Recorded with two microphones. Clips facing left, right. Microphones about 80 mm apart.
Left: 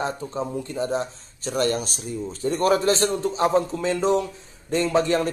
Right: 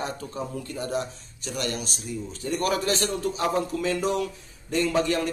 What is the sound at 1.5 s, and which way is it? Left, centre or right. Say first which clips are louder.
Speech: left 7 dB; left.